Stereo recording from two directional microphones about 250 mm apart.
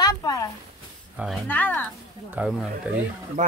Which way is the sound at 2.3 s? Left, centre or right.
Centre.